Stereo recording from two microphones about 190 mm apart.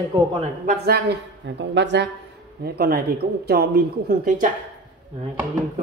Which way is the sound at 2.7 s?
55° right (ahead or behind).